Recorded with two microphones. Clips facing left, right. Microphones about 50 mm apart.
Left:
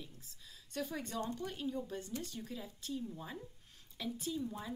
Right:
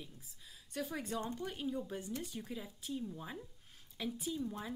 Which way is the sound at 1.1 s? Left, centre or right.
Centre.